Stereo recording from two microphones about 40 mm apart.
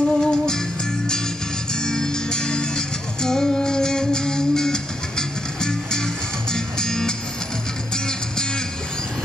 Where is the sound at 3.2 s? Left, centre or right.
Centre.